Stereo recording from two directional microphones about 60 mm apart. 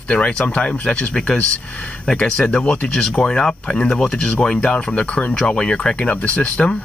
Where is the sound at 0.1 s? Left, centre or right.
Centre.